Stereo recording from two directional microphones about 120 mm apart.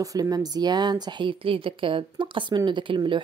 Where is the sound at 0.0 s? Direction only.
30° right (ahead or behind).